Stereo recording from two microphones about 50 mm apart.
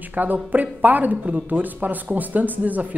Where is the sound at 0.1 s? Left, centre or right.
Right.